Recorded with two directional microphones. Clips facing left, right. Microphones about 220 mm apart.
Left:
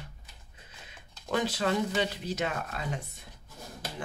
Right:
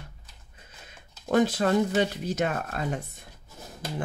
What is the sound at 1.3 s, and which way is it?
Speech, 50° right (ahead or behind).